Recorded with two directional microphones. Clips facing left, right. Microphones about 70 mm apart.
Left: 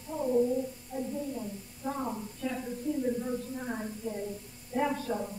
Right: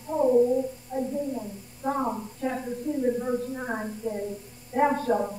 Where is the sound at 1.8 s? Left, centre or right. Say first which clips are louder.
Right 7 dB; right.